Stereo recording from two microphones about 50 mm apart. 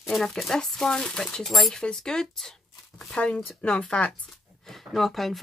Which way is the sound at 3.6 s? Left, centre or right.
Left.